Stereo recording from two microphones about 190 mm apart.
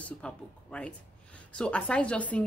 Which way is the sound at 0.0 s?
5° left (ahead or behind).